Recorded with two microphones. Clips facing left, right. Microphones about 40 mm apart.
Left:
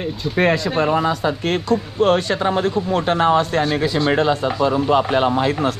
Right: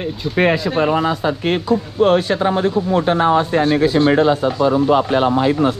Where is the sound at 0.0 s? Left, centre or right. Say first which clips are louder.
Right 2 dB; centre.